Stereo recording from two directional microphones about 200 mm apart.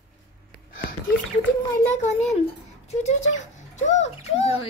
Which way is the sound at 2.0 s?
35° left (ahead or behind).